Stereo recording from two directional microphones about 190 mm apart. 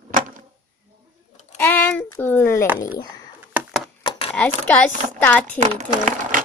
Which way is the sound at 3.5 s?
Centre (ahead or behind).